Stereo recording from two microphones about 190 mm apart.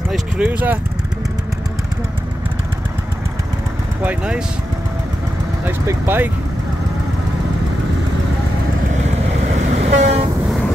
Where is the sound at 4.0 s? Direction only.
5° right (ahead or behind).